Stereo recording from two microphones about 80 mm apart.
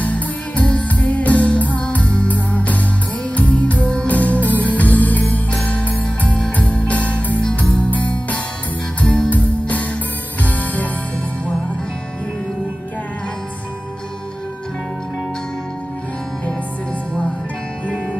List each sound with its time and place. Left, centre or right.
0.0 s music: centre